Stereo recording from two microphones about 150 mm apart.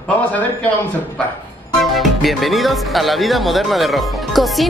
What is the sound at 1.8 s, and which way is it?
Speech, centre (ahead or behind).